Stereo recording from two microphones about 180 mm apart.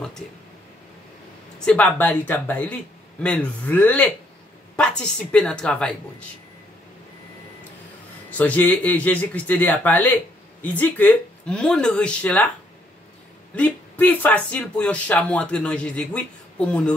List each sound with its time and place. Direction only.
1.6 s speech: 5° left (ahead or behind)
8.3 s speech: 10° left (ahead or behind)
13.6 s speech: 10° left (ahead or behind)